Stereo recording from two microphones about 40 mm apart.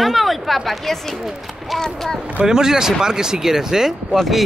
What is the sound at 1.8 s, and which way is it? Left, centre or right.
Speech, centre.